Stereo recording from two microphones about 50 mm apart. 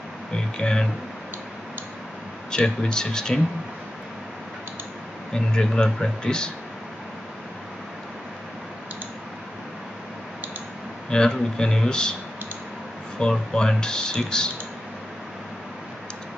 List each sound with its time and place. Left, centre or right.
0.6 s speech: centre
2.5 s speech: centre
5.3 s speech: centre
11.1 s speech: centre
13.3 s speech: centre